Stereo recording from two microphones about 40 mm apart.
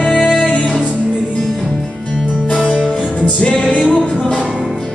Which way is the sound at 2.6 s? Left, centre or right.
Left.